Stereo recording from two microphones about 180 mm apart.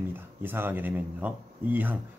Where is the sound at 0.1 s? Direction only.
10° right (ahead or behind).